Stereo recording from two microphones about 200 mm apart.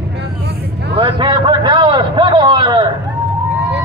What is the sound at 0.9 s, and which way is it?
Vehicle, 25° right (ahead or behind).